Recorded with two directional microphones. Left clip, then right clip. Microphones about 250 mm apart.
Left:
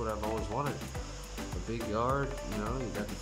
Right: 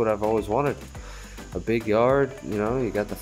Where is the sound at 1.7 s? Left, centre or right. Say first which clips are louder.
Right 12 dB; right.